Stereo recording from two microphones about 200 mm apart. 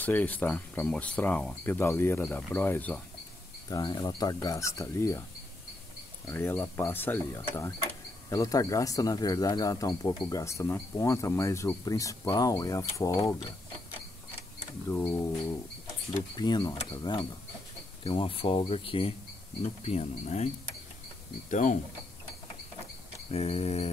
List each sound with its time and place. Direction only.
0.0 s speech: 10° left (ahead or behind)
6.2 s speech: 10° left (ahead or behind)
14.9 s speech: 15° left (ahead or behind)
16.3 s speech: 20° left (ahead or behind)
21.5 s speech: 40° left (ahead or behind)
23.3 s speech: 30° left (ahead or behind)